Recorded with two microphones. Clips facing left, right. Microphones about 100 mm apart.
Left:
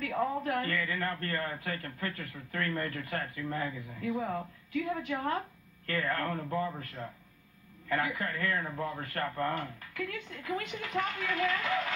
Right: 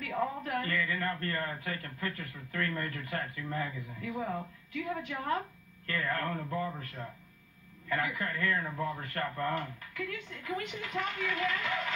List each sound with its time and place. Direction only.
0.0 s speech: 40° left (ahead or behind)
7.9 s speech: 40° left (ahead or behind)